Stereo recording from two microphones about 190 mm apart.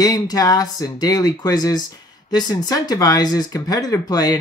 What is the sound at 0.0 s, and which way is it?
Speech, 20° left (ahead or behind).